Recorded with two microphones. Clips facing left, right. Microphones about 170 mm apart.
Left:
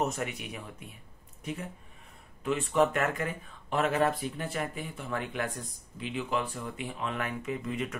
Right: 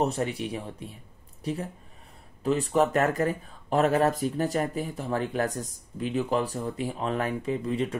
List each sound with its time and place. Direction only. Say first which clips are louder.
0.0 s speech: right 5 dB; 30° right (ahead or behind)